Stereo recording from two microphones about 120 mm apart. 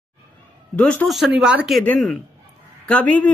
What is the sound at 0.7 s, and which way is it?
Speech, 10° left (ahead or behind).